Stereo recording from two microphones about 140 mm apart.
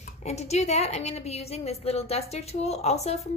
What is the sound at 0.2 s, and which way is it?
A woman's voice, 50° left (ahead or behind).